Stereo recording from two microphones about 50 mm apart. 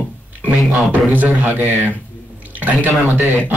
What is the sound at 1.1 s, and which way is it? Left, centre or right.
A man's voice, right.